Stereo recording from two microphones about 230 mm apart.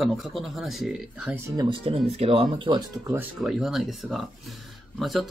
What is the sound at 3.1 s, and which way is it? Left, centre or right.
Speech, centre.